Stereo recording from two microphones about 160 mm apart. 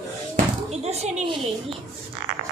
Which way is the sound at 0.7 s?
45° right (ahead or behind).